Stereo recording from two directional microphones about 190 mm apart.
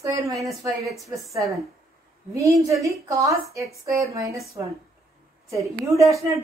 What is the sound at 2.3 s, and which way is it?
Speech, 15° right (ahead or behind).